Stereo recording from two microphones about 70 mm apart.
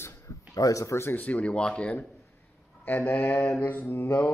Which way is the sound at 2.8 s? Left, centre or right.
Left.